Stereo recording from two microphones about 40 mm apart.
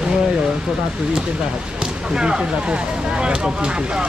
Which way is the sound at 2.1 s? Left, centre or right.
Right.